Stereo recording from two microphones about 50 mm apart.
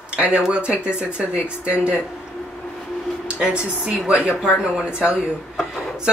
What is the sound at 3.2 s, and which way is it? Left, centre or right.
A woman's voice, right.